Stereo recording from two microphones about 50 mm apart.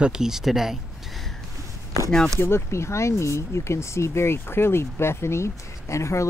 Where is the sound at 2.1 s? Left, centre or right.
Centre.